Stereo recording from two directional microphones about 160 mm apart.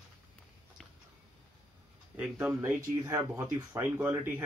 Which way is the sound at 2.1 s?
10° right (ahead or behind).